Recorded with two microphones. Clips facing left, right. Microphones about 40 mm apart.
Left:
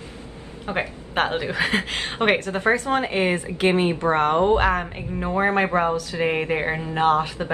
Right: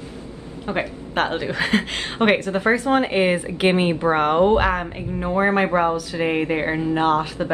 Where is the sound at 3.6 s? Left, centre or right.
Right.